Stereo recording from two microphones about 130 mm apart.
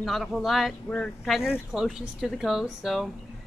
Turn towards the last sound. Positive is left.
turn(degrees=0)  # may be behind; listen again after turning